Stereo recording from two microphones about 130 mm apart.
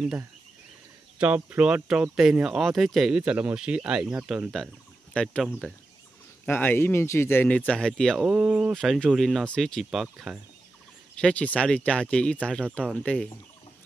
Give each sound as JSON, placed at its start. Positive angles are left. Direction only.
{"t": 1.1, "sound": "speech", "side_deg": -10}
{"t": 6.4, "sound": "speech", "side_deg": 15}
{"t": 8.3, "sound": "speech", "side_deg": -10}
{"t": 8.7, "sound": "speech", "side_deg": 0}
{"t": 11.1, "sound": "speech", "side_deg": 10}